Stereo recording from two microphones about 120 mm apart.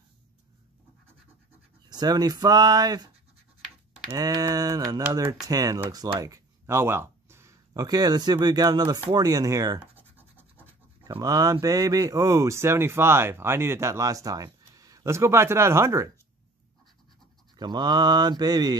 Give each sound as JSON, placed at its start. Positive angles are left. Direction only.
{"t": 1.9, "sound": "speech", "side_deg": -35}
{"t": 4.1, "sound": "speech", "side_deg": -30}
{"t": 9.8, "sound": "scratch", "side_deg": -15}
{"t": 11.1, "sound": "speech", "side_deg": -30}
{"t": 17.6, "sound": "speech", "side_deg": -35}